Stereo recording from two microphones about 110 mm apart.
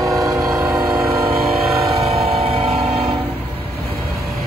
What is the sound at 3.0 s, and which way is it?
Train, 55° right (ahead or behind).